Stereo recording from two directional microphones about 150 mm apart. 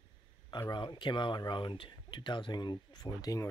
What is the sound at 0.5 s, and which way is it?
Speech, 30° left (ahead or behind).